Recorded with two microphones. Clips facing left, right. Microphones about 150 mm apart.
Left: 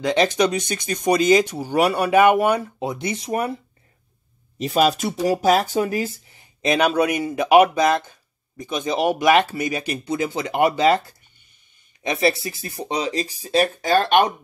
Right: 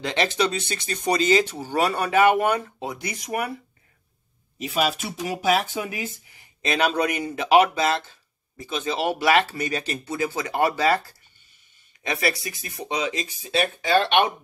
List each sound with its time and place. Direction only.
0.0 s speech: 15° left (ahead or behind)
4.6 s speech: 40° left (ahead or behind)
6.6 s speech: 15° left (ahead or behind); by 14.3 s 45° left (ahead or behind)